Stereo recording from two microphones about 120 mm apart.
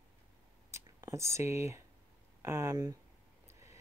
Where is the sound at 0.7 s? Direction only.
25° right (ahead or behind).